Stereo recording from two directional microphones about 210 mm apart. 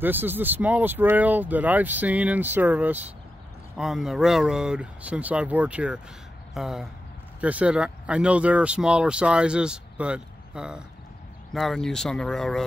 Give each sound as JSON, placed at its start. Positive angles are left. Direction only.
{"t": 0.0, "sound": "speech", "side_deg": -10}